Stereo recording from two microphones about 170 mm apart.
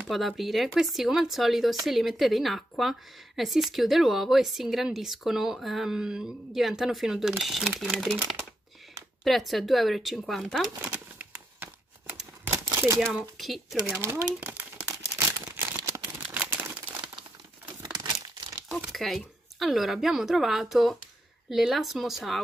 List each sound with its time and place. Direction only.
0.0 s speech: centre (ahead or behind)
9.2 s speech: centre (ahead or behind)
10.8 s a sound: 10° right (ahead or behind)
13.0 s speech: centre (ahead or behind)
13.8 s speech: 10° right (ahead or behind)
15.4 s a sound: 15° right (ahead or behind)
17.9 s crumpling: 25° right (ahead or behind)
18.7 s speech: centre (ahead or behind)